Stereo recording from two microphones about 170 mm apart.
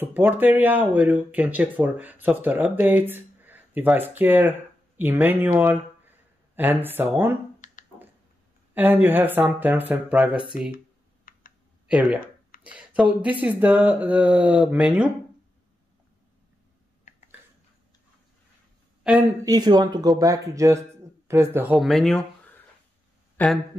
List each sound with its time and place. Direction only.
0.0 s speech: 10° right (ahead or behind)
7.6 s finger snapping: 50° left (ahead or behind)
8.7 s speech: 10° right (ahead or behind)
11.3 s clicking: 55° left (ahead or behind)
11.9 s speech: 5° right (ahead or behind)
19.1 s speech: 5° right (ahead or behind)
19.4 s speech: 25° right (ahead or behind); by 23.6 s 5° left (ahead or behind)